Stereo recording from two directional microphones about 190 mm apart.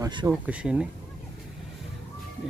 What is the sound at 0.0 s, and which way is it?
Speech, 20° right (ahead or behind).